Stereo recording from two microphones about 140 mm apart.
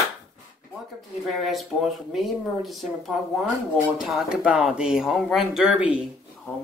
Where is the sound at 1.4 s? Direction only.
Centre (ahead or behind).